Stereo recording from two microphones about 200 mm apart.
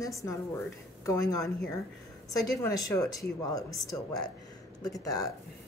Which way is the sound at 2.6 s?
15° left (ahead or behind).